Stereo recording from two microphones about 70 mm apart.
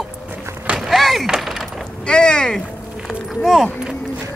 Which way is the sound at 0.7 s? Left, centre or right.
Centre.